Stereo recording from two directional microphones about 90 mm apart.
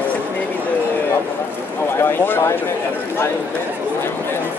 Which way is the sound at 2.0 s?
25° left (ahead or behind).